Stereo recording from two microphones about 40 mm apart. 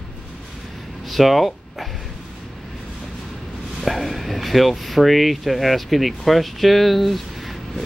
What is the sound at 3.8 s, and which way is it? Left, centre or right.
Speech, centre.